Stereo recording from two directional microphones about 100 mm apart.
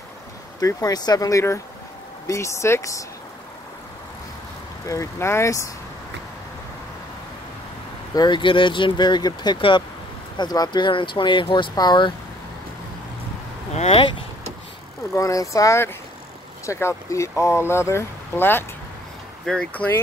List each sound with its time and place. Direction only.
0.6 s speech: 40° left (ahead or behind)
2.2 s speech: 30° left (ahead or behind)
4.8 s speech: 30° left (ahead or behind)
8.1 s speech: 45° left (ahead or behind)
9.6 s speech: 55° left (ahead or behind)
10.3 s speech: 45° left (ahead or behind)
13.7 s speech: 75° left (ahead or behind)
15.1 s speech: 30° left (ahead or behind)
19.4 s speech: 10° left (ahead or behind)